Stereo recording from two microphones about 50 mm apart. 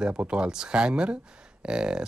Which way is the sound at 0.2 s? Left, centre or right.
Centre.